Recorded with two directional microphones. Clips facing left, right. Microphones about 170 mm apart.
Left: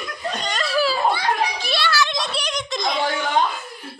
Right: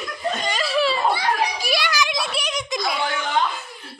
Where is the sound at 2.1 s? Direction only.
5° right (ahead or behind).